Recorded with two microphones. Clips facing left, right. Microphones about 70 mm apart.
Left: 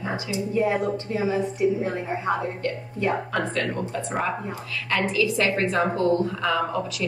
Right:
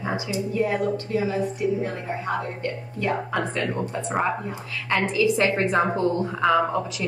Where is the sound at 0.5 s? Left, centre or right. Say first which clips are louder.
Left 1 dB; left.